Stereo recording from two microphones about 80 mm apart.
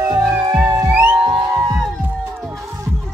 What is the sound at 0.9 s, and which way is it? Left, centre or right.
Music, right.